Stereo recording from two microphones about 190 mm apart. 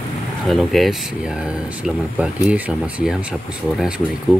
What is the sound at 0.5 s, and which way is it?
Speech, centre (ahead or behind).